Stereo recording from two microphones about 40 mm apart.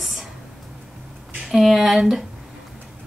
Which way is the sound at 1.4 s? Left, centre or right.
Centre.